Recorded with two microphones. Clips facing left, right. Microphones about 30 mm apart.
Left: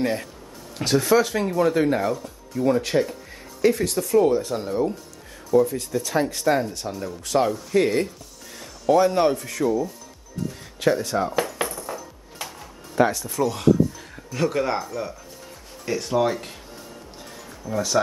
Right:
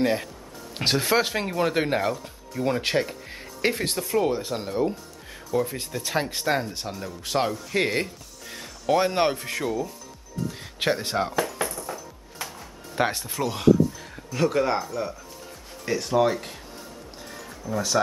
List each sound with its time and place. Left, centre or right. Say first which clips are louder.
0.0 s speech: right 1 dB; centre
0.7 s speech: left 3 dB; right
1.4 s speech: left 4 dB; right
2.8 s speech: left 2 dB; right
4.1 s speech: left 6 dB; right
5.5 s speech: left 7 dB; right
8.9 s speech: left 3 dB; right
10.8 s speech: left 3 dB; right
11.6 s music: left 2 dB; centre
12.9 s speech: left 5 dB; right
13.4 s speech: left 5 dB; centre
13.7 s speech: right 2 dB; centre
17.6 s speech: left 2 dB; centre